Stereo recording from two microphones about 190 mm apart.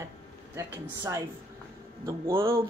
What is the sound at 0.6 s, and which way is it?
Speech, 15° right (ahead or behind).